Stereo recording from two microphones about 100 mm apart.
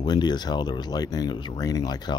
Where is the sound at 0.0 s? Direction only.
45° left (ahead or behind).